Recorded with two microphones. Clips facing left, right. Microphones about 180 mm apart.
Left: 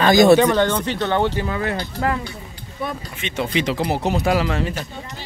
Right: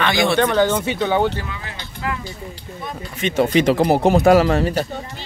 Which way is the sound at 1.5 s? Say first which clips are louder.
Left 10 dB; 60° left (ahead or behind).